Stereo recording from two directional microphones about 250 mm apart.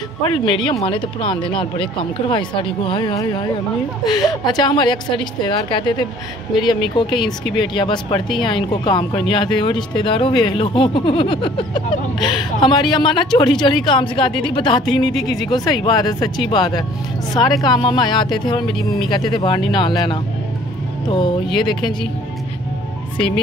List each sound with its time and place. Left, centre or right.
0.2 s speech: centre
4.5 s speech: centre
21.5 s speech: centre